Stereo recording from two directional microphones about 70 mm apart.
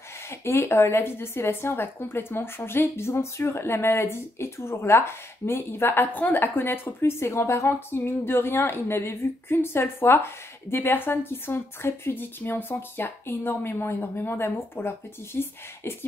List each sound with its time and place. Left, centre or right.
0.3 s a woman's voice: left